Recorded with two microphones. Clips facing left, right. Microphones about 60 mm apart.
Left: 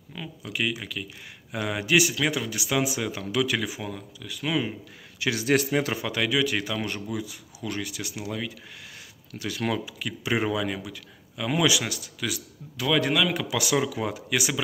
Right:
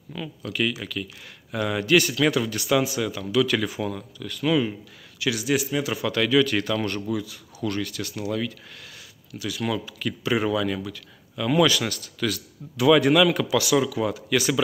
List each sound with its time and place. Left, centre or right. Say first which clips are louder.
0.1 s a man's voice: right 3 dB; centre; by 3.4 s left
3.4 s a man's voice: right 4 dB; centre
5.2 s speech: right 1 dB; left
5.5 s a man's voice: left 2 dB; left
5.9 s a man's voice: right 5 dB; centre
9.3 s speech: right 1 dB; left
9.8 s a man's voice: right 3 dB; centre
12.7 s a man's voice: right 7 dB; centre
13.6 s speech: right 2 dB; left